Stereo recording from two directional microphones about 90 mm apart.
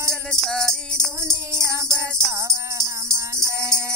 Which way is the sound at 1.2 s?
30° right (ahead or behind).